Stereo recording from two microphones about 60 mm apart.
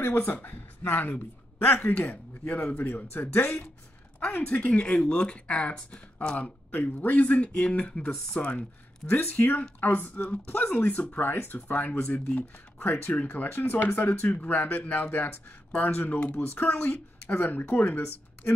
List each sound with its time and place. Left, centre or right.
0.0 s speech: left
4.4 s speech: left
8.3 s speech: left
12.0 s speech: centre
12.8 s speech: left